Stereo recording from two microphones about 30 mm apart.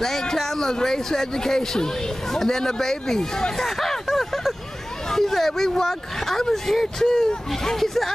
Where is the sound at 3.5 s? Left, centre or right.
Centre.